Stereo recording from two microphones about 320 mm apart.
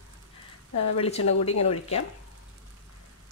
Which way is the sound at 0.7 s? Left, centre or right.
Left.